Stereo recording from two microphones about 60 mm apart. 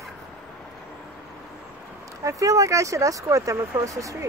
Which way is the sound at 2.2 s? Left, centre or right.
Right.